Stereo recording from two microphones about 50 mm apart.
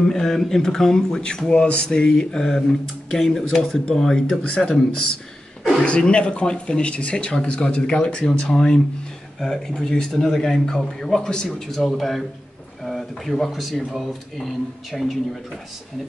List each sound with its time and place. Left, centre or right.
0.1 s a man's voice: centre